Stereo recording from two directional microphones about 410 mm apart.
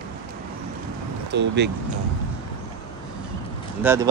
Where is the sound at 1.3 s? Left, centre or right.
Right.